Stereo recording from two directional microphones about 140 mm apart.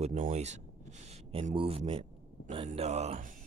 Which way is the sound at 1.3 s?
45° right (ahead or behind).